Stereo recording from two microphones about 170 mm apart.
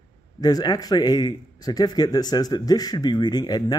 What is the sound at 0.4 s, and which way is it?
Speech, 25° left (ahead or behind).